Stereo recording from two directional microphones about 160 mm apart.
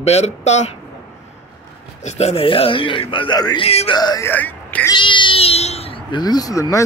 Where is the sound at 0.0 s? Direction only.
40° left (ahead or behind).